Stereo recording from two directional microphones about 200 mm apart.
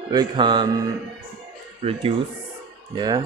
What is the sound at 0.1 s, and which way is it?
Speech, 20° right (ahead or behind).